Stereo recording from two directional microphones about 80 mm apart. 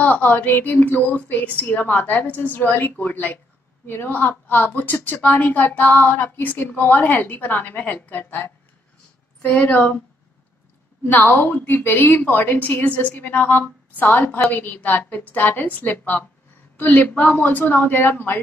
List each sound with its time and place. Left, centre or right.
0.0 s a woman's voice: left
11.1 s speech: left